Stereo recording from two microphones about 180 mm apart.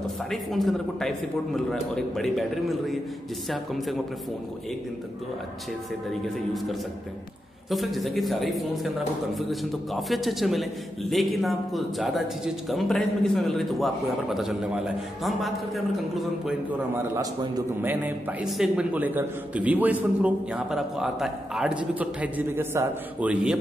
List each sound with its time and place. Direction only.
0.0 s speech: centre (ahead or behind)
6.2 s speech: centre (ahead or behind)
16.9 s a man's voice: 15° right (ahead or behind)
17.8 s a man's voice: 5° right (ahead or behind)